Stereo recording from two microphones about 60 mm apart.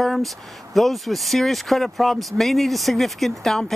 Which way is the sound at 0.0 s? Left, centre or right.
Centre.